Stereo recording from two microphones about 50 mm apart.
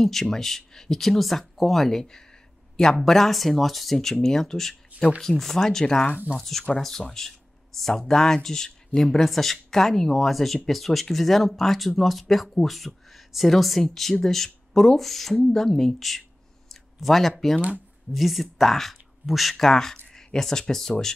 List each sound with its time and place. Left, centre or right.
0.0 s speech: centre
17.6 s speech: right
18.1 s speech: centre